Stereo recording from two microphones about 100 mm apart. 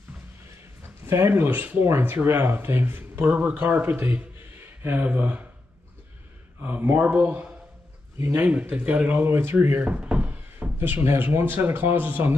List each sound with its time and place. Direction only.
1.0 s speech: 25° right (ahead or behind)
6.6 s speech: 20° right (ahead or behind)
8.5 s speech: 15° right (ahead or behind)